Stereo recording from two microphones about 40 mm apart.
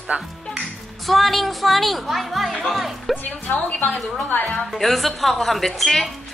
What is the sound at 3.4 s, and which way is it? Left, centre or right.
Speech, left.